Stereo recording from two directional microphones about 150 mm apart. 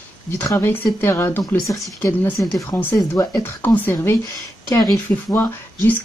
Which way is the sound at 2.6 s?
15° left (ahead or behind).